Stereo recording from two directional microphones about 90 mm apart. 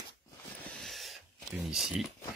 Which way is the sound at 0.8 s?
Centre (ahead or behind).